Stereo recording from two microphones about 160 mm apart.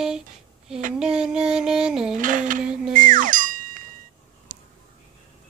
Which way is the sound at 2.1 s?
55° right (ahead or behind).